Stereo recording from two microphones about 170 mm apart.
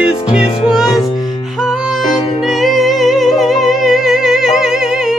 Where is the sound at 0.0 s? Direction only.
5° right (ahead or behind).